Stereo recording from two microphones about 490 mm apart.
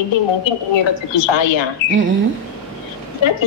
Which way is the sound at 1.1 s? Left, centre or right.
Left.